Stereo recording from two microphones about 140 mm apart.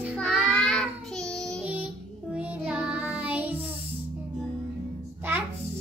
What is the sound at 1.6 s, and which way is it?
Music, 10° right (ahead or behind).